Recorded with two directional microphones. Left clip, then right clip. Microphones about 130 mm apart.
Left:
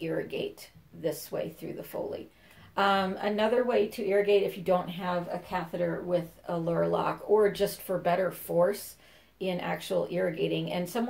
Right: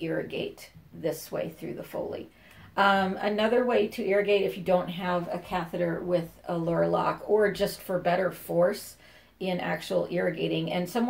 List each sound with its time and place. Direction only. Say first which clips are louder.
0.0 s a woman's voice: right 1 dB; 20° left (ahead or behind)
5.5 s a woman's voice: right 2 dB; 15° left (ahead or behind)